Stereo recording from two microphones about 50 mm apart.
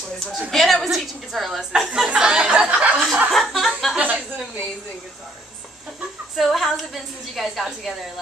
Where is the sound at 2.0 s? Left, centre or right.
Centre.